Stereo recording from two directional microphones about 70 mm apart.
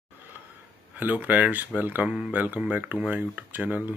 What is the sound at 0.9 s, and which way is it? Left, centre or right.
Speech, right.